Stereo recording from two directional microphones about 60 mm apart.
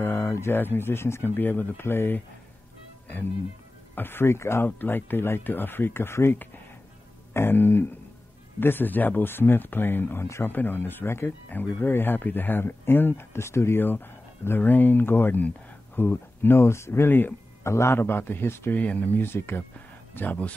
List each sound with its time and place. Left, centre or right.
0.0 s a sound: left
0.3 s speech: left
3.9 s speech: left
4.6 s speech: left
7.3 s speech: left
18.7 s speech: left
20.2 s speech: left